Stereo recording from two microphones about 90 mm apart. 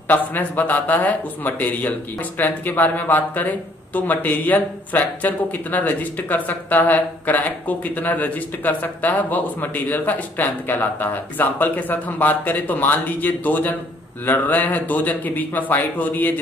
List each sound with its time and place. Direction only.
0.1 s a man's voice: 20° left (ahead or behind)